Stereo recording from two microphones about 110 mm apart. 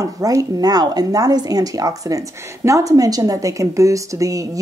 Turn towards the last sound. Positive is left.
turn(degrees=-30)  # may be behind; listen again after turning